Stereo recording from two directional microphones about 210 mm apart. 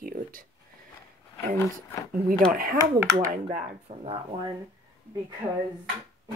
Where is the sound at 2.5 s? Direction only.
45° right (ahead or behind).